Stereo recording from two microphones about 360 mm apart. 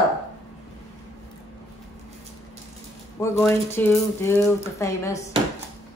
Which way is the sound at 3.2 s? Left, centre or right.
Centre.